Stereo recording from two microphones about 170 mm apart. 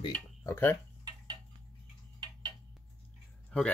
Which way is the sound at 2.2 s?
25° right (ahead or behind).